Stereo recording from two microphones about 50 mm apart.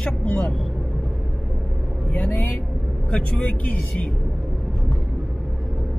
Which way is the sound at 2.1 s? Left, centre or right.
Left.